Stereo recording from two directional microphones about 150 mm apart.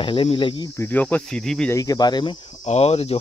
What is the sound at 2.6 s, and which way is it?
Speech, 45° left (ahead or behind).